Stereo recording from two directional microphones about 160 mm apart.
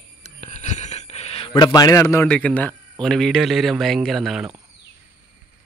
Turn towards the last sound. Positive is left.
turn(degrees=0)  # may be behind; listen again after turning